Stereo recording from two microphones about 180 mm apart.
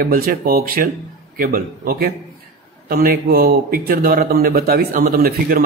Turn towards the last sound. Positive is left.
turn(degrees=-55)  # may be behind; listen again after turning